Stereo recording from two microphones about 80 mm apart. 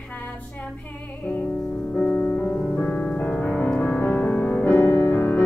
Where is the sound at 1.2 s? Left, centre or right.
Left.